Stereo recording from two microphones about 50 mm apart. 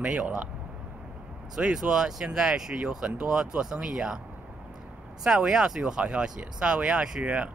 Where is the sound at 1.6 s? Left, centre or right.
Centre.